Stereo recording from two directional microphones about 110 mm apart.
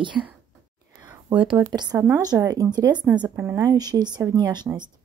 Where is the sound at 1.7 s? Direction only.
35° right (ahead or behind).